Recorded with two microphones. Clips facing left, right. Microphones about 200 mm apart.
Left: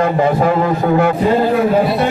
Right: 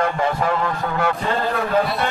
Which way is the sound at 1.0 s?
25° left (ahead or behind).